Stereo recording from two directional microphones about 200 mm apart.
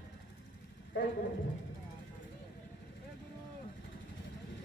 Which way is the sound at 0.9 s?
65° left (ahead or behind).